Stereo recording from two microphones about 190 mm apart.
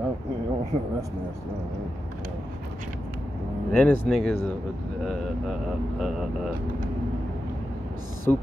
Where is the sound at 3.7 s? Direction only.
5° left (ahead or behind).